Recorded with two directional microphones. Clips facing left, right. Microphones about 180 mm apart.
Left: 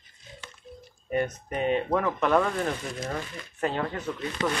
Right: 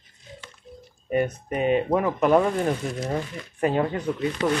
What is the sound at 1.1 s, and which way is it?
Speech, 10° right (ahead or behind).